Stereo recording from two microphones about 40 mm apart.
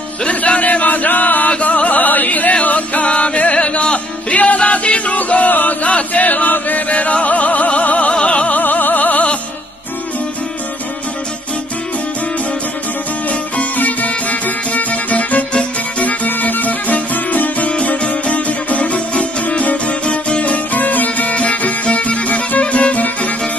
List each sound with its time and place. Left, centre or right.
0.2 s a sound: left
1.5 s music: left
6.9 s music: left
8.5 s music: left
13.7 s music: left
16.3 s music: left
17.6 s music: left